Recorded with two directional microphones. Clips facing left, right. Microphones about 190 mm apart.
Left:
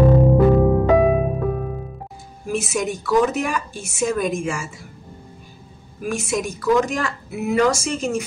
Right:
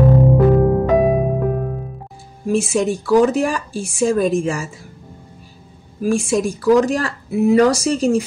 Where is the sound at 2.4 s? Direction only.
30° right (ahead or behind).